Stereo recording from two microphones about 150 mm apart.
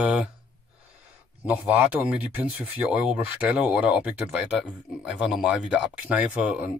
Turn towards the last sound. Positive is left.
turn(degrees=-10)  # may be behind; listen again after turning